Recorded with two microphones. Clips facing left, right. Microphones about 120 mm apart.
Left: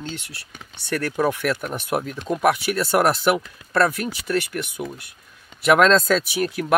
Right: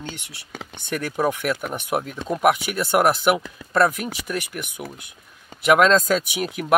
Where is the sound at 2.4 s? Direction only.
15° right (ahead or behind).